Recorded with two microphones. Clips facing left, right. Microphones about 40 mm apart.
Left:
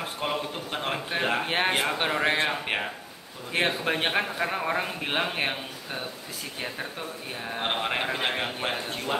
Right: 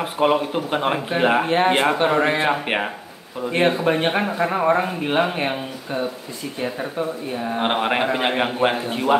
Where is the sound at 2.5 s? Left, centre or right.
Right.